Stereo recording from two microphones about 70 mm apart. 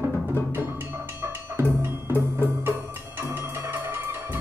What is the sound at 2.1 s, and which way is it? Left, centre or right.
Music, right.